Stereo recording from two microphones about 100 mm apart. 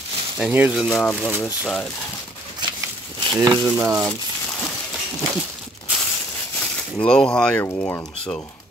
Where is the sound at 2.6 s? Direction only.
50° right (ahead or behind).